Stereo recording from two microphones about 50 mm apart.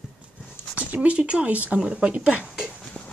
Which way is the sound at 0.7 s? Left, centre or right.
Right.